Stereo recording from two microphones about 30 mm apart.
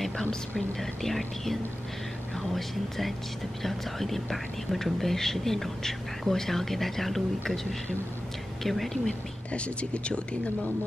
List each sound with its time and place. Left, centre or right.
0.2 s speech: left
0.7 s speech: centre
8.6 s speech: centre
9.5 s speech: left